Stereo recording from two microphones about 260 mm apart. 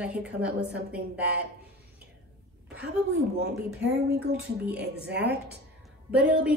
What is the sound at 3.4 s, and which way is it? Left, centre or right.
Speech, right.